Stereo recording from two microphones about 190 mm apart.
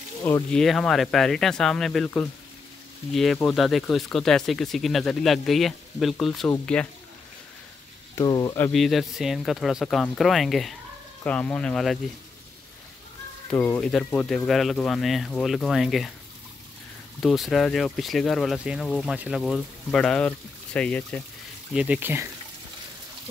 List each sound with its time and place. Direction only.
0.2 s speech: 10° left (ahead or behind)
8.2 s speech: 20° left (ahead or behind)
8.7 s speech: centre (ahead or behind)
13.5 s speech: 10° left (ahead or behind)
17.2 s speech: centre (ahead or behind)
21.7 s speech: 5° right (ahead or behind)